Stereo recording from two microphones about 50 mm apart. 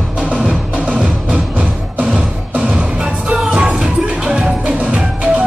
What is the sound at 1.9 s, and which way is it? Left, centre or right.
Music, right.